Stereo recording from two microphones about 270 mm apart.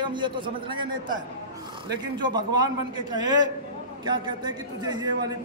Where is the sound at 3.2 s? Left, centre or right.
Right.